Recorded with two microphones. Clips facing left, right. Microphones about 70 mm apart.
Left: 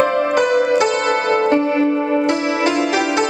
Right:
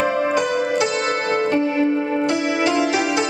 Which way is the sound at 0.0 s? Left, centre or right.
Centre.